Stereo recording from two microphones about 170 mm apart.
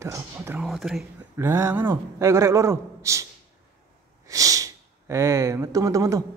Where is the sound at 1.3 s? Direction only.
15° right (ahead or behind).